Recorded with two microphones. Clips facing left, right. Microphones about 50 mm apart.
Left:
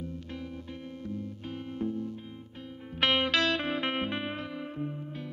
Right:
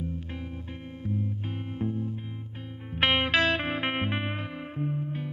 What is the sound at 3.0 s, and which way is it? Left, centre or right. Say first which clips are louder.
Music: right 2 dB; right.